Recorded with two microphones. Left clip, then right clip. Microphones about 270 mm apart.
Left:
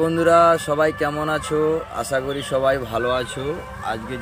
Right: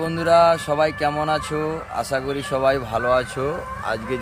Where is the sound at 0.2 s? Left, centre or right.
Right.